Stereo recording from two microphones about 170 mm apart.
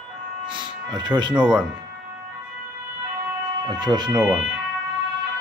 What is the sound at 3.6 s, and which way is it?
Speech, 25° right (ahead or behind).